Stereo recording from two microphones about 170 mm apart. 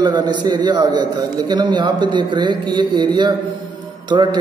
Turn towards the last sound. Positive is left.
turn(degrees=-25)  # may be behind; listen again after turning